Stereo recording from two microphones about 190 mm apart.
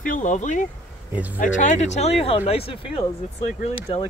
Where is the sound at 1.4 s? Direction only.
40° left (ahead or behind).